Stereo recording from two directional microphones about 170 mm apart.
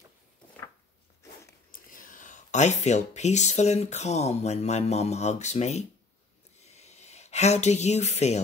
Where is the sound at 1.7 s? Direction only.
55° left (ahead or behind).